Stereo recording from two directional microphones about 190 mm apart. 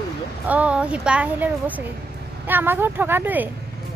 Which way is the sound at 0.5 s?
5° right (ahead or behind).